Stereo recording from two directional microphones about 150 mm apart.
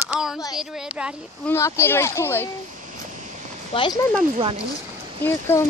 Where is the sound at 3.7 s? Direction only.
35° left (ahead or behind).